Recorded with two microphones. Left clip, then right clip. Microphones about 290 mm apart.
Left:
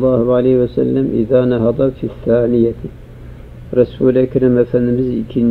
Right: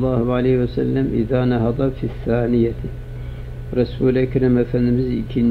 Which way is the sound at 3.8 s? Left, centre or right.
Right.